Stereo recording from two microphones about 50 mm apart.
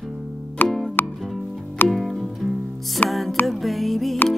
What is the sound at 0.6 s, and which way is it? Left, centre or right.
Music, left.